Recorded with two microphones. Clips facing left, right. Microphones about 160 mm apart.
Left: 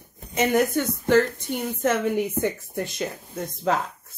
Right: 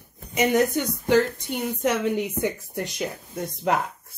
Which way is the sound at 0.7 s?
15° right (ahead or behind).